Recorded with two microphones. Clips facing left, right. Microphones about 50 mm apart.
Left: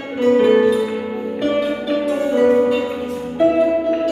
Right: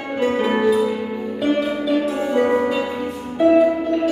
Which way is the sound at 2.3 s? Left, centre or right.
Centre.